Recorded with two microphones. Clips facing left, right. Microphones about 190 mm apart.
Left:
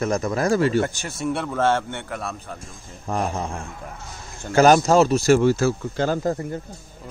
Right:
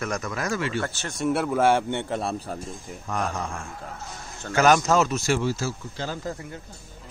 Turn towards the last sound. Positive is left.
turn(degrees=50)  # may be behind; listen again after turning